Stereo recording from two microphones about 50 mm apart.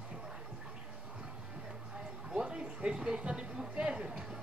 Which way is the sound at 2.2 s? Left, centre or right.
Centre.